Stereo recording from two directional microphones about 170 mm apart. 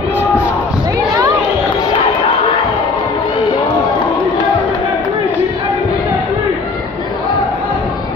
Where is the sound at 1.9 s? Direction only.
35° left (ahead or behind).